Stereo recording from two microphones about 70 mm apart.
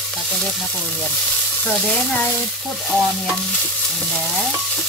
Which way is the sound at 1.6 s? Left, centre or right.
Centre.